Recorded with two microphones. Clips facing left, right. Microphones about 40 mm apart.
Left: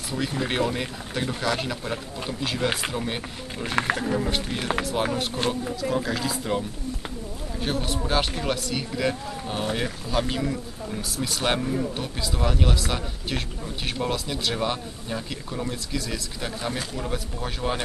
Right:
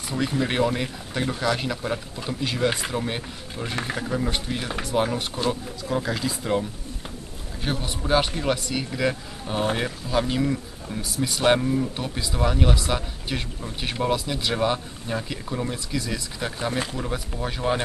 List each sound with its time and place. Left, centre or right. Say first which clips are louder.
0.1 s speech: right 2 dB; centre
3.6 s speech: left 5 dB; left
4.2 s speech: even; centre
7.6 s speech: left 1 dB; centre